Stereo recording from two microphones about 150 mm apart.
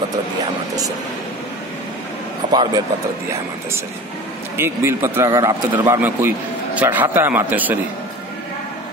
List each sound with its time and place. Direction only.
2.5 s speech: 30° right (ahead or behind)
4.6 s a man's voice: 15° right (ahead or behind)